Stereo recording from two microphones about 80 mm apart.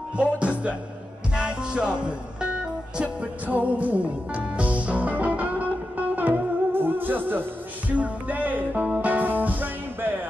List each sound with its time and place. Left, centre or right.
0.2 s speech: centre
1.3 s music: centre